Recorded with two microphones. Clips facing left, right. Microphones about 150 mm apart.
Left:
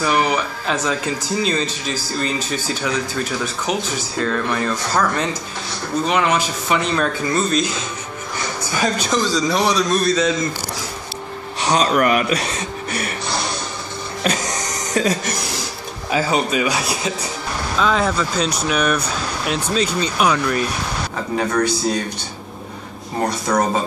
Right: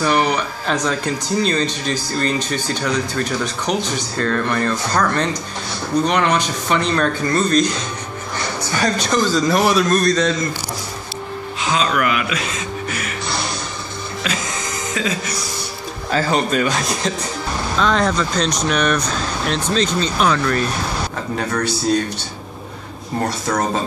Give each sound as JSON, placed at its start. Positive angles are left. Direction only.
{"t": 0.0, "sound": "speech", "side_deg": 5}
{"t": 8.7, "sound": "speech", "side_deg": 10}
{"t": 11.7, "sound": "speech", "side_deg": 35}
{"t": 14.2, "sound": "music", "side_deg": 40}
{"t": 16.1, "sound": "speech", "side_deg": 5}